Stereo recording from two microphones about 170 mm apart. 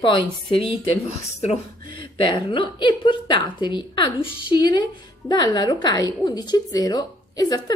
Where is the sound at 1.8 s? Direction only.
30° left (ahead or behind).